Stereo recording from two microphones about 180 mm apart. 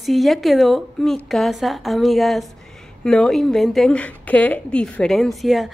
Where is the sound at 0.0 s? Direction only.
Centre (ahead or behind).